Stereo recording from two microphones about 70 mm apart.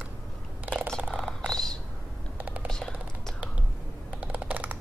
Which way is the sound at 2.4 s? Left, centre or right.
Centre.